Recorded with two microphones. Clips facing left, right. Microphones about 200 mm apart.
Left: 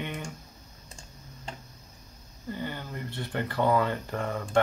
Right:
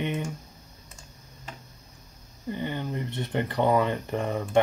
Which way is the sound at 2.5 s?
20° right (ahead or behind).